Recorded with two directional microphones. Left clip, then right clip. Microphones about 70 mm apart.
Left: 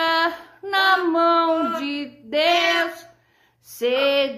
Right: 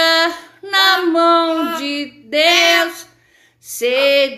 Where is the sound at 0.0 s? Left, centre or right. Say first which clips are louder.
Right 6 dB; left.